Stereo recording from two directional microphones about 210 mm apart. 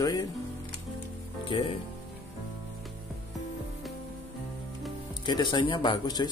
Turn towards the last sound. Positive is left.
turn(degrees=20)  # may be behind; listen again after turning